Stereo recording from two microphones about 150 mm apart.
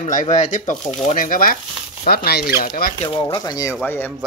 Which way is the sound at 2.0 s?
90° left.